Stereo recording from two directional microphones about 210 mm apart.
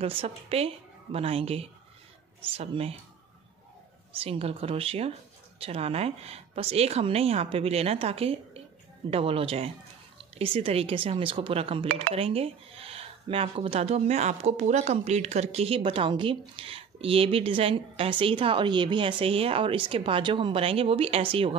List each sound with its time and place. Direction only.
0.0 s speech: 25° right (ahead or behind)
4.2 s speech: 30° right (ahead or behind)